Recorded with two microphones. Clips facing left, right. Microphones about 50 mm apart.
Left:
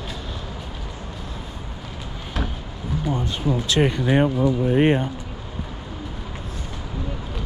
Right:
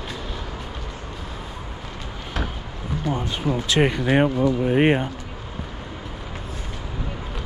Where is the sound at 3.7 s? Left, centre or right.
Right.